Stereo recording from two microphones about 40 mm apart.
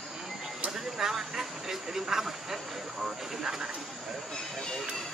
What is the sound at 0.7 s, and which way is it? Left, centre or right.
Speech, centre.